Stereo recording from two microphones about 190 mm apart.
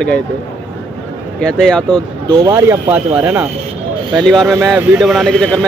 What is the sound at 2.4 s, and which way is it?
Speech, 15° right (ahead or behind).